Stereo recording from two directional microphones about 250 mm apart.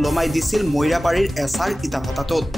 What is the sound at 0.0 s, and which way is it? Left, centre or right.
A man's voice, centre.